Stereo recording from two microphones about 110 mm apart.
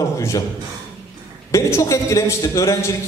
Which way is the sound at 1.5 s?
30° left (ahead or behind).